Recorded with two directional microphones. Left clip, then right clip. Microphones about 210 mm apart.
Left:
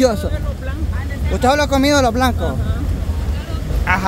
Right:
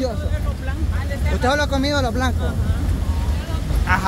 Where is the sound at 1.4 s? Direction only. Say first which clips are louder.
Left 5 dB; 25° left (ahead or behind).